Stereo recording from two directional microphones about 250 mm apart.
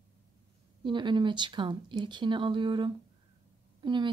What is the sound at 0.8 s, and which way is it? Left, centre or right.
A woman's voice, centre.